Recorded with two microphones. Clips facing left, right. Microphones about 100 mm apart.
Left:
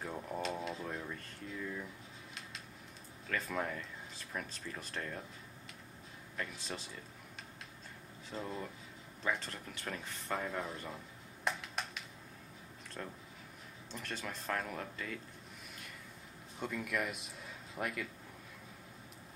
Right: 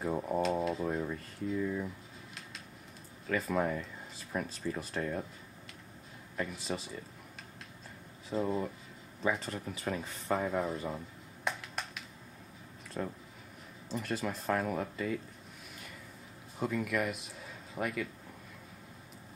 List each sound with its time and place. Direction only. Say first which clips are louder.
0.1 s speech: right 8 dB; 25° right (ahead or behind)
0.8 s speech: right 8 dB; 10° right (ahead or behind)
3.3 s speech: right 6 dB; 5° right (ahead or behind)
6.3 s speech: right 6 dB; 5° right (ahead or behind)
8.3 s speech: right 9 dB; 5° right (ahead or behind)
11.4 s a sound: right 1 dB; centre (ahead or behind)
13.0 s speech: right 8 dB; 15° right (ahead or behind)
13.8 s speech: right 8 dB; centre (ahead or behind)
16.5 s speech: right 5 dB; centre (ahead or behind)